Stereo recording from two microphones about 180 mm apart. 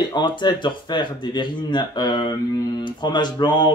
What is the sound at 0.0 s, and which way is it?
Speech, 25° left (ahead or behind).